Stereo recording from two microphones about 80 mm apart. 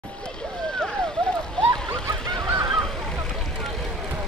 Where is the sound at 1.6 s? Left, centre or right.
Right.